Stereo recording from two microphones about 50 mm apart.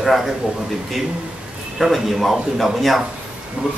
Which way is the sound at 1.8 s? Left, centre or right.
Centre.